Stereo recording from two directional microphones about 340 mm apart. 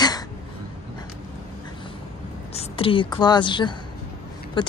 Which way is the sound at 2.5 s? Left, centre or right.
Centre.